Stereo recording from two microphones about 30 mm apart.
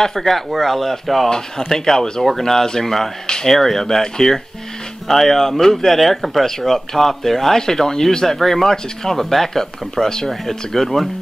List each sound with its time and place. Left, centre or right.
0.0 s speech: centre
1.6 s speech: centre
2.0 s speech: left
2.2 s speech: centre